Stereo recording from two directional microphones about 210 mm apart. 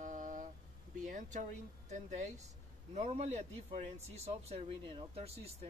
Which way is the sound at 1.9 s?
35° right (ahead or behind).